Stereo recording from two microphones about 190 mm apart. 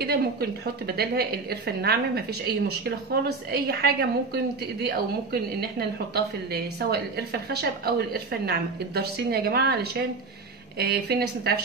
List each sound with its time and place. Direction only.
0.0 s a woman's voice: 55° right (ahead or behind)